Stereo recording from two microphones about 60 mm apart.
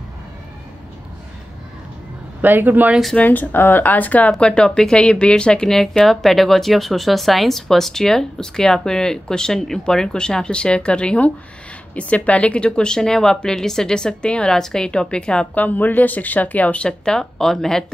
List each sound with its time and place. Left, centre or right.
2.4 s speech: right
3.2 s speech: left; by 17.9 s centre